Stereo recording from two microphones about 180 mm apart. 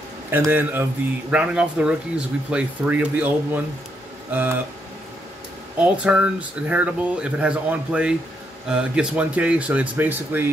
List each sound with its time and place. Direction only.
0.3 s speech: 10° right (ahead or behind)
5.8 s speech: 5° right (ahead or behind)